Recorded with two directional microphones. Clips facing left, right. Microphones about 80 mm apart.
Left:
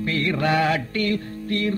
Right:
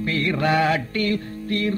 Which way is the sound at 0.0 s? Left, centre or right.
Right.